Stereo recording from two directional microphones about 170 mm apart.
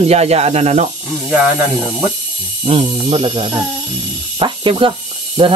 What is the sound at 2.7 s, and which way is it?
Speech, 30° right (ahead or behind).